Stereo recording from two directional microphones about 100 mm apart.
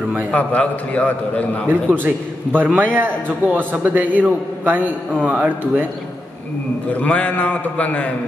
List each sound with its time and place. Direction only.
0.3 s a man's voice: 15° left (ahead or behind)
1.7 s a man's voice: 20° right (ahead or behind)
6.9 s a man's voice: 15° left (ahead or behind)